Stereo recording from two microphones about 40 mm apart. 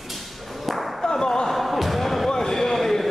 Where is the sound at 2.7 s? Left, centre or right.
Centre.